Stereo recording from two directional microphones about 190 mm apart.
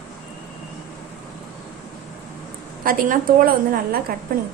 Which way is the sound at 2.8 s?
45° right (ahead or behind).